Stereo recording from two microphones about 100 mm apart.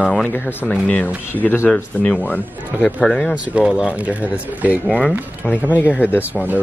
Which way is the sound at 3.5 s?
10° right (ahead or behind).